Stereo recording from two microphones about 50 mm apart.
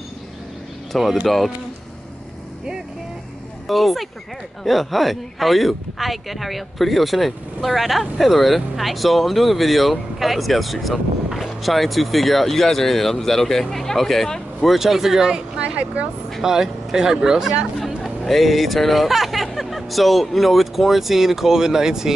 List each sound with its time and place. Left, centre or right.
1.2 s speech: centre
3.6 s speech: centre
15.6 s speech: right
16.3 s speech: centre
18.2 s speech: centre